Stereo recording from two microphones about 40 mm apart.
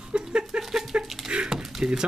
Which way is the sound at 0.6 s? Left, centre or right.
Centre.